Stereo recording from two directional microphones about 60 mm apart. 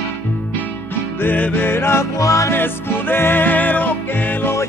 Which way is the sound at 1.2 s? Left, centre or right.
Left.